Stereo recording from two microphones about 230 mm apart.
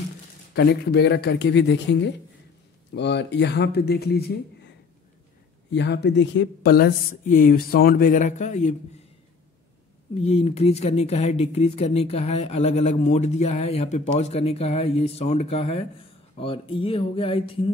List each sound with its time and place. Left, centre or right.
0.6 s speech: left
5.7 s a woman's voice: left
10.1 s speech: left